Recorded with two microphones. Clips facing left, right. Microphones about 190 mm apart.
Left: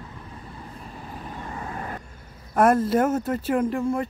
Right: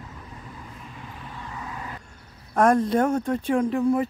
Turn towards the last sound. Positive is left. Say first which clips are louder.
# right 2 dB
turn(degrees=0)  # may be behind; listen again after turning